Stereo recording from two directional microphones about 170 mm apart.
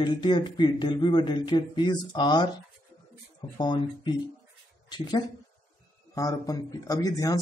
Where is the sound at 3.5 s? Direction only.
25° left (ahead or behind).